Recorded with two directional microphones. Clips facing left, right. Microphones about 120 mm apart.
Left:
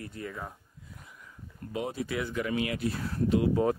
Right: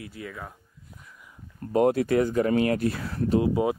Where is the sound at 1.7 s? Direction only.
65° right (ahead or behind).